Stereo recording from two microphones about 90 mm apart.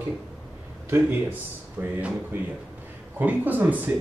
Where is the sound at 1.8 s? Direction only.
20° right (ahead or behind).